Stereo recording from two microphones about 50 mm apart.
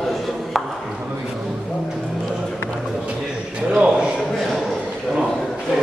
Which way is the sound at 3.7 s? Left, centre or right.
Centre.